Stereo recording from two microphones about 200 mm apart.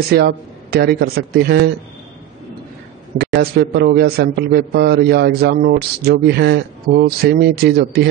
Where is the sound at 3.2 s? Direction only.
50° right (ahead or behind).